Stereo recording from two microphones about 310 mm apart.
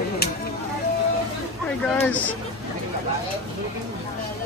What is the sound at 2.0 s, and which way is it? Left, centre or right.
Speech, centre.